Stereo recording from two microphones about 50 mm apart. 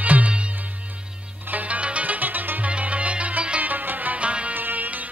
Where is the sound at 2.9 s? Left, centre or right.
Right.